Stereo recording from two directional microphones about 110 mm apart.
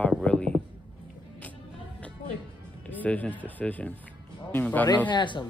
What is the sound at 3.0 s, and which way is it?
A man's voice, 15° left (ahead or behind).